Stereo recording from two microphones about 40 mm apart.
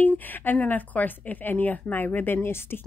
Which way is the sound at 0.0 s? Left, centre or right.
Left.